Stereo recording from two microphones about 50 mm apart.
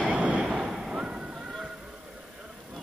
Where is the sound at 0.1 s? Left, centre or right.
Right.